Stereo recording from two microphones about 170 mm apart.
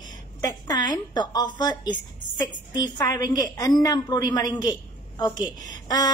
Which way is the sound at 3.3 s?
20° left (ahead or behind).